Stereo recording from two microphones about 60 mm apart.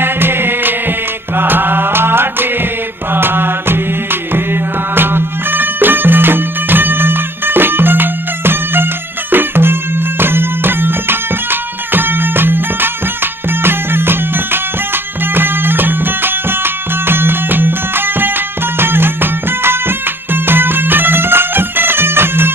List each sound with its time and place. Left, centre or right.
0.0 s music: right